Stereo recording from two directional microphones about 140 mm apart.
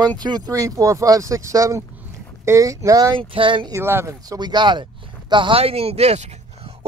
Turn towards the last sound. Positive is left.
turn(degrees=-50)  # may be behind; listen again after turning